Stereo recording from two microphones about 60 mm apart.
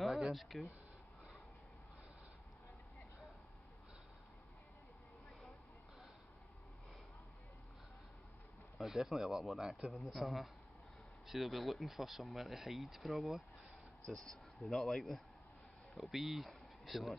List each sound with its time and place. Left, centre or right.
0.0 s speech: centre
8.7 s speech: centre
14.1 s speech: centre